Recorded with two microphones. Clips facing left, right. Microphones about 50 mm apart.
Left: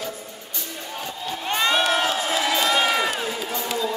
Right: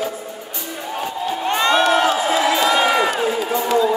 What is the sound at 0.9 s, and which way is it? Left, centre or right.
Crowd, centre.